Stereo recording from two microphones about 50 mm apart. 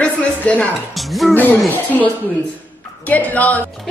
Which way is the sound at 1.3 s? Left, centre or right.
Left.